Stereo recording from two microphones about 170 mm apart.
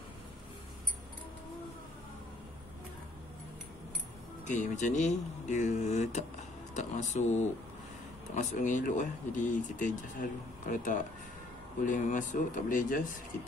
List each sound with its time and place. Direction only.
4.5 s speech: 45° left (ahead or behind)